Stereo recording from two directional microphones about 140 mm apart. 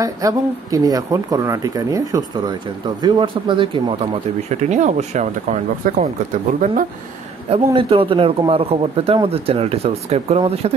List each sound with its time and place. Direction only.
0.0 s speech: 25° right (ahead or behind)
3.0 s speech: 35° right (ahead or behind)
4.6 s speech: 60° right (ahead or behind)
6.6 s speech: 75° right (ahead or behind)
7.4 s a man's voice: 40° right (ahead or behind)